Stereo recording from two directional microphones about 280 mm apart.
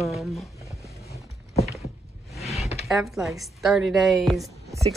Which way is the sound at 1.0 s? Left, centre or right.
Left.